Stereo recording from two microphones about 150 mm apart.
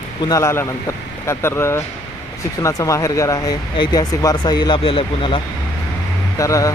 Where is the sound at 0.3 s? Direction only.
20° left (ahead or behind); by 5.4 s 35° left (ahead or behind).